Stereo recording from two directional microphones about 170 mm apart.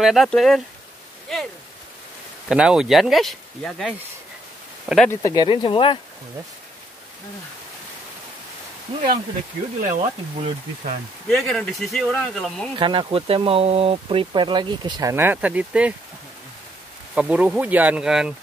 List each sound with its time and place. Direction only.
0.0 s speech: centre (ahead or behind)
2.4 s speech: 5° right (ahead or behind)
5.2 s speech: 25° left (ahead or behind)
9.8 s speech: 45° right (ahead or behind)
11.2 s speech: 5° left (ahead or behind)
12.7 s speech: 30° right (ahead or behind); by 15.9 s 10° right (ahead or behind)
17.1 s speech: 10° right (ahead or behind)